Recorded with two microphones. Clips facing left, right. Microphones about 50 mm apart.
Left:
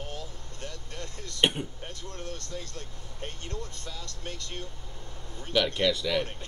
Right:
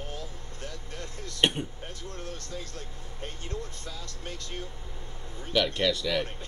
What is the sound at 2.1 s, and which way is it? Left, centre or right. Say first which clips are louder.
Speech: left 1 dB; centre.